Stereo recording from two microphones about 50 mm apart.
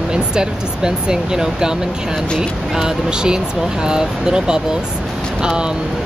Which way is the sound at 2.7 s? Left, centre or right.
Centre.